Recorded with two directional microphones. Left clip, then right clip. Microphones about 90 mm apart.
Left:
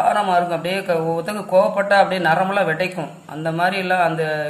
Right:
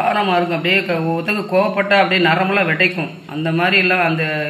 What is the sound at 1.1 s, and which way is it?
Speech, 20° left (ahead or behind).